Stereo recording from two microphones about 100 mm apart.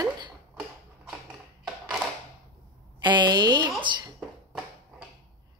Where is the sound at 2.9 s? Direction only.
50° right (ahead or behind).